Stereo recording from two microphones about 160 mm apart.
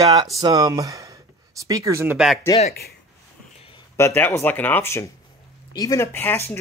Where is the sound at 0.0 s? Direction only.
25° right (ahead or behind).